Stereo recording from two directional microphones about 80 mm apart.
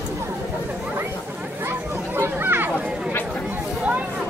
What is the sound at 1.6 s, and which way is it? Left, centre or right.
Chatter, right.